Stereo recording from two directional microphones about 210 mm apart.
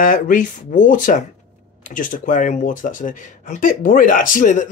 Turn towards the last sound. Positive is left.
turn(degrees=40)  # may be behind; listen again after turning